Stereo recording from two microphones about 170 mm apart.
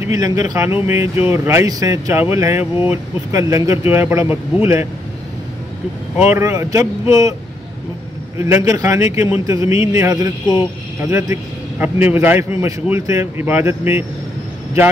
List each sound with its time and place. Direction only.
0.0 s speech: 20° right (ahead or behind)
6.1 s speech: 15° right (ahead or behind)
8.4 s speech: 15° right (ahead or behind)